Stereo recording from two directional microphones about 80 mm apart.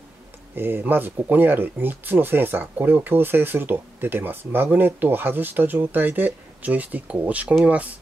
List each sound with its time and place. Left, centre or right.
0.6 s speech: right